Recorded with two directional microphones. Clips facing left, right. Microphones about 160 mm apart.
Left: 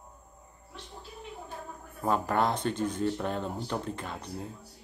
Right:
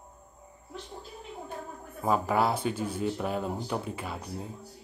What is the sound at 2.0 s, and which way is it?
Speech, 5° right (ahead or behind).